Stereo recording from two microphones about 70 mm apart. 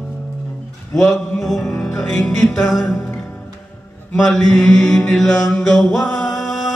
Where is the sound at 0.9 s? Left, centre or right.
Centre.